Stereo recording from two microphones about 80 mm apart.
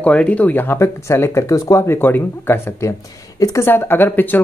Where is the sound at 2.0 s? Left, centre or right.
Left.